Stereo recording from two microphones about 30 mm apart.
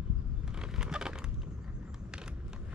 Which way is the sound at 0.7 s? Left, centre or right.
Right.